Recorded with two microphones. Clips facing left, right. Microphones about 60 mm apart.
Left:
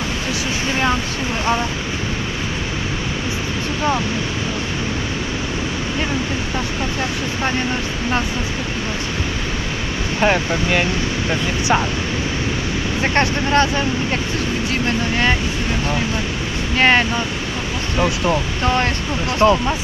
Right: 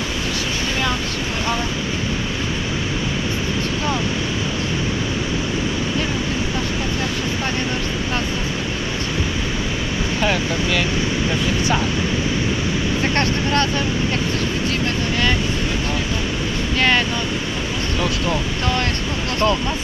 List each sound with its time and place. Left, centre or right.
10.2 s speech: left
13.0 s speech: left
16.7 s speech: left
19.4 s speech: left